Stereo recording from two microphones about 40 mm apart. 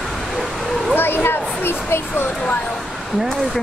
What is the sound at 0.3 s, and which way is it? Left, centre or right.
Bow-wow, centre.